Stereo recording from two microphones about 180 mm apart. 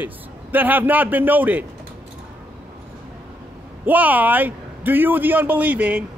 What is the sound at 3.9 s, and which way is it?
A man's voice, 10° right (ahead or behind).